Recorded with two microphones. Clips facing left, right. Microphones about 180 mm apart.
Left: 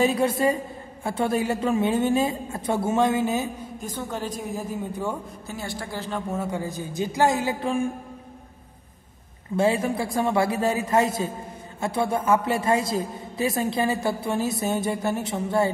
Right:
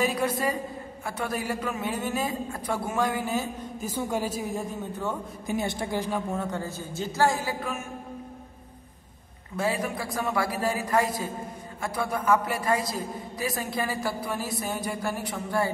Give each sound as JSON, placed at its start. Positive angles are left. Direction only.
{"t": 0.0, "sound": "a woman's voice", "side_deg": 25}
{"t": 3.8, "sound": "a woman's voice", "side_deg": -10}
{"t": 5.5, "sound": "a woman's voice", "side_deg": -20}
{"t": 6.3, "sound": "a man's voice", "side_deg": 10}
{"t": 9.6, "sound": "a woman's voice", "side_deg": 25}